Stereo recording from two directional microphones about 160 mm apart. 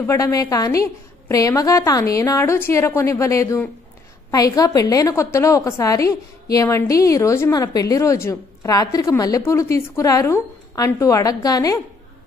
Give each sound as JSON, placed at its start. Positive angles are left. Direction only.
{"t": 0.0, "sound": "a woman's voice", "side_deg": 20}